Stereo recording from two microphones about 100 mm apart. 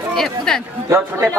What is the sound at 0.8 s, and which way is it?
Speech, 30° right (ahead or behind).